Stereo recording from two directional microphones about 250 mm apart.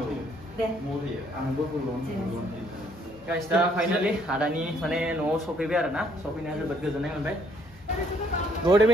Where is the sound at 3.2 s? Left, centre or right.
Centre.